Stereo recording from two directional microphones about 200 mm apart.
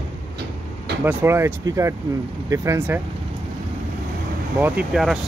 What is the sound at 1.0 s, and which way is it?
Speech, 15° right (ahead or behind).